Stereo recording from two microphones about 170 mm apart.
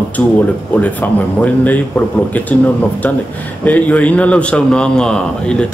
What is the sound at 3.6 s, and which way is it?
A man's voice, 10° left (ahead or behind).